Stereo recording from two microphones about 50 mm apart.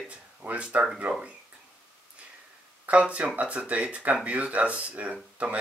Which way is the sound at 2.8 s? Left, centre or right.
Right.